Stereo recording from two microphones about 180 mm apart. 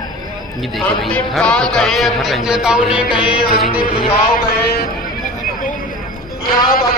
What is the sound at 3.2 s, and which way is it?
Music, 30° left (ahead or behind).